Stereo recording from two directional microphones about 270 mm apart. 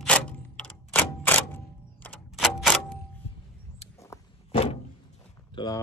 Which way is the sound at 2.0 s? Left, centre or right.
Centre.